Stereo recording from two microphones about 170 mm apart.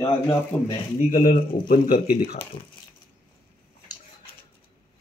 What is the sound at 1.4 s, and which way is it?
Speech, 60° left (ahead or behind).